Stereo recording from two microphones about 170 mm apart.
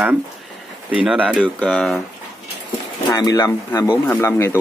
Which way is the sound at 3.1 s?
20° left (ahead or behind).